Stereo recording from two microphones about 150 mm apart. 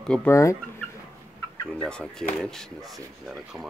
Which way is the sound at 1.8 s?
5° left (ahead or behind).